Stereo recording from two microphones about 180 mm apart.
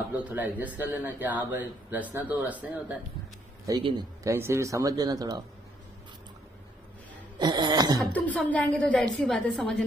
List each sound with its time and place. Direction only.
0.3 s speech: 10° right (ahead or behind)
3.6 s speech: 25° right (ahead or behind)
7.3 s speech: 25° right (ahead or behind)
8.1 s a woman's voice: 5° left (ahead or behind)